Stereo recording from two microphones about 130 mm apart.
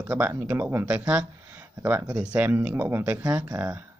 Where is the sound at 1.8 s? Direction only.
20° right (ahead or behind).